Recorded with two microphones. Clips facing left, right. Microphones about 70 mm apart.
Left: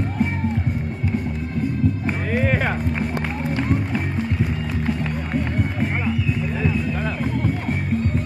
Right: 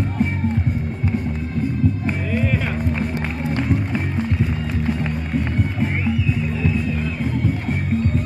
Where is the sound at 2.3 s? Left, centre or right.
Left.